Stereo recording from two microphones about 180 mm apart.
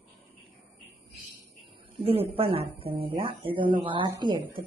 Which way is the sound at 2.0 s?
30° right (ahead or behind).